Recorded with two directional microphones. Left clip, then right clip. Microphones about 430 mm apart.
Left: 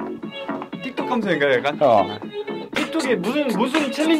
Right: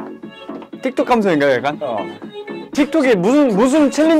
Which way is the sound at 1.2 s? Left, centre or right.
Right.